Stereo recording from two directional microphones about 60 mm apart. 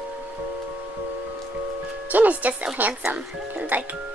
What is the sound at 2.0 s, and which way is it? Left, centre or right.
Speech, right.